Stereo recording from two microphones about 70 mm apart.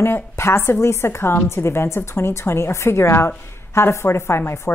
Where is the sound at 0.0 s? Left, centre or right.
Left.